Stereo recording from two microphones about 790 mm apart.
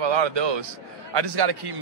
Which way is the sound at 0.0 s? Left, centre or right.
Right.